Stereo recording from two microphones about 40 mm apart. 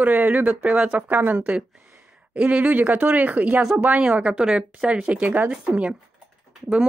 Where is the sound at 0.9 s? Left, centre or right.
Right.